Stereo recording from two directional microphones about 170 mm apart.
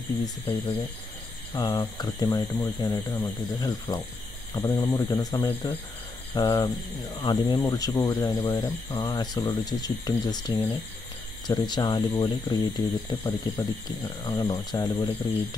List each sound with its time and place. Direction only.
0.2 s speech: 25° left (ahead or behind)